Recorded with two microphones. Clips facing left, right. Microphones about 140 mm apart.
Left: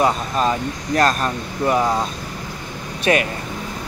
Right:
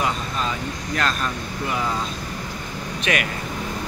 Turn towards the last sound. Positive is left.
turn(degrees=35)  # may be behind; listen again after turning